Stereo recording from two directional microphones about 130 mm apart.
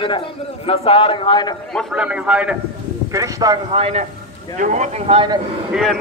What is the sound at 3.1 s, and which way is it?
Speech, 25° right (ahead or behind).